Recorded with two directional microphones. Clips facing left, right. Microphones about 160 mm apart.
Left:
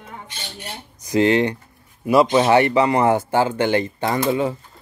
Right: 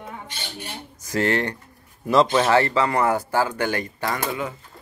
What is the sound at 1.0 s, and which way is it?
Speech, 15° left (ahead or behind).